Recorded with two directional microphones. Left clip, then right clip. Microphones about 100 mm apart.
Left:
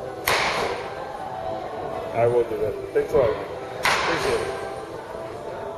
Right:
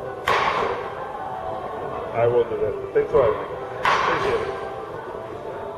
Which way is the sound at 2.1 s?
25° left (ahead or behind).